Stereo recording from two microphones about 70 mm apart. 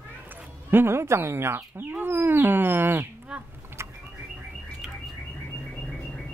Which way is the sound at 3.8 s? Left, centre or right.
Right.